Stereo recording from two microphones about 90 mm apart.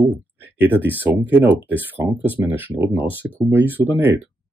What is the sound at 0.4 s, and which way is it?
Speech, 20° right (ahead or behind).